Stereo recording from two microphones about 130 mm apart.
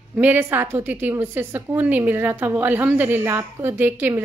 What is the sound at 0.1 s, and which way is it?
A woman's voice, 15° right (ahead or behind).